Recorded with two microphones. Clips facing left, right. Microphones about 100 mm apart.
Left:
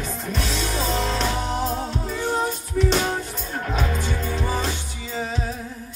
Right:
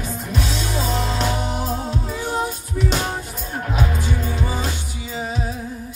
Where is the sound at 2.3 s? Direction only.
10° right (ahead or behind).